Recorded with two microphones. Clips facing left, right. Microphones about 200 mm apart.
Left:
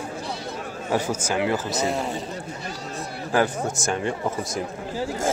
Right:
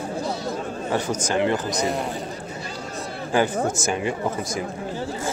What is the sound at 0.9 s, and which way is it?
A man's voice, 10° left (ahead or behind).